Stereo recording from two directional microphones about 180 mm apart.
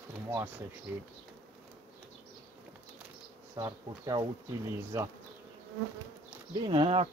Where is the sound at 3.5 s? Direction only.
20° right (ahead or behind).